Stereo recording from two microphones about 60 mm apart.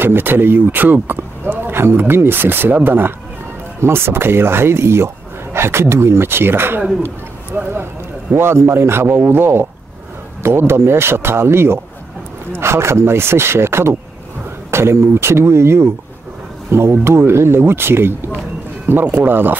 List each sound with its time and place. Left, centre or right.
0.0 s speech: right
8.4 s speech: right